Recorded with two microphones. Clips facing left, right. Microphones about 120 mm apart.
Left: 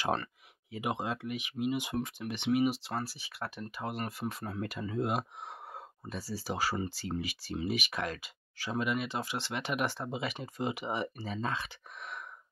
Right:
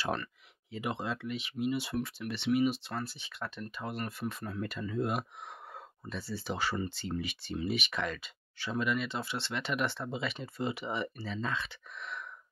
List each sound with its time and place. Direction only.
0.7 s speech: 15° left (ahead or behind)
5.7 s a sound: 10° left (ahead or behind)
6.1 s speech: 40° left (ahead or behind)
6.4 s speech: 10° left (ahead or behind)
11.2 s speech: 45° left (ahead or behind)
11.5 s speech: 15° left (ahead or behind)